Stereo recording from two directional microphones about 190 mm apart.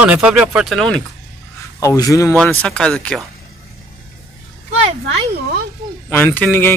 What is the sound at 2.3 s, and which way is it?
Speech, 5° left (ahead or behind).